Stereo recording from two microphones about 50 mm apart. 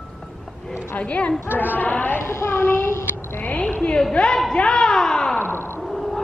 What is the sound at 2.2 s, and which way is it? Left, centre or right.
Child singing, left.